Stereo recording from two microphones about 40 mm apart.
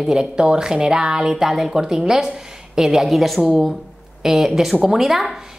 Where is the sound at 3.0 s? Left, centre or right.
Centre.